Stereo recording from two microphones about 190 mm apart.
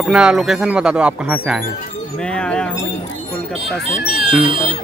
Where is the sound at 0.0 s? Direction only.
5° right (ahead or behind).